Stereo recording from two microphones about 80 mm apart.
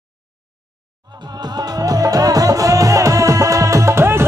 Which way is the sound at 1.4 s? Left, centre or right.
Right.